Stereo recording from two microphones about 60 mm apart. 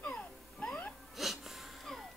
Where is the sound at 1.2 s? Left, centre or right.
Centre.